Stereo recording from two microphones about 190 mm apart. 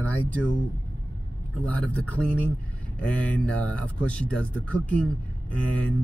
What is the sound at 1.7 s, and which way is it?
Speech, 10° left (ahead or behind).